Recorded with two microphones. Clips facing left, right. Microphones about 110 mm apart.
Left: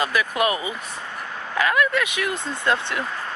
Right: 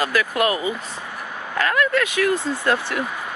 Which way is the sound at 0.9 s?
15° right (ahead or behind).